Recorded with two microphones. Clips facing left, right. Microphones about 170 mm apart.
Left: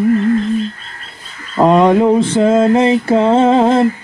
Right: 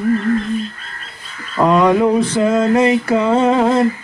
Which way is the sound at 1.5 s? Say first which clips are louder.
Left 3 dB; 25° left (ahead or behind).